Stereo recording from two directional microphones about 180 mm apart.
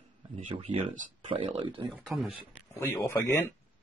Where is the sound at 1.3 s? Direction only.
30° right (ahead or behind).